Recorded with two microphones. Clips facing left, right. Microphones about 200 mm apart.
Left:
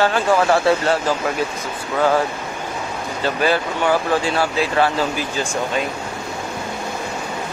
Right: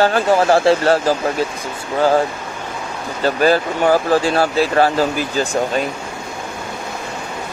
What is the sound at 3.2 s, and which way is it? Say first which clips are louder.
Speech: right 4 dB; 40° right (ahead or behind).